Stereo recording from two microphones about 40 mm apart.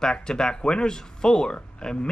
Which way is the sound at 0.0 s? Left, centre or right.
Centre.